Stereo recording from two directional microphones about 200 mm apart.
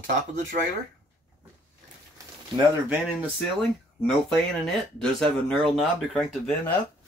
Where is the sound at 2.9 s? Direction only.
10° right (ahead or behind).